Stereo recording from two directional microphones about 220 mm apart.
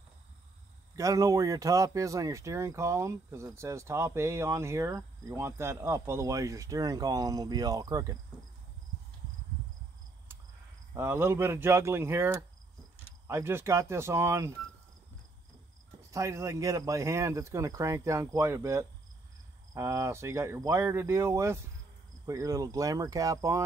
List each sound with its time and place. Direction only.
0.9 s speech: 15° right (ahead or behind)
11.0 s speech: 10° right (ahead or behind)
16.1 s speech: 15° right (ahead or behind)